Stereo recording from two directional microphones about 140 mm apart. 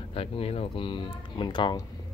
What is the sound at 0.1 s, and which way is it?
Speech, 45° left (ahead or behind).